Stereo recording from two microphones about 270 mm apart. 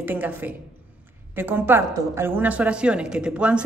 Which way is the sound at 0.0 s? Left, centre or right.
Centre.